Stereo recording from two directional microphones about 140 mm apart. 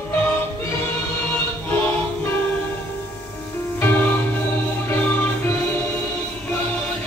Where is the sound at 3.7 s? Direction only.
15° left (ahead or behind).